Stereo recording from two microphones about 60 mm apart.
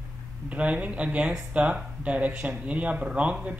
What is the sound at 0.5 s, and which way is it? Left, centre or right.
Speech, right.